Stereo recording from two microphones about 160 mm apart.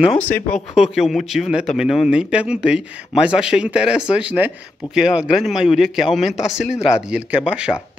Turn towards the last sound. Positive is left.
turn(degrees=-5)  # may be behind; listen again after turning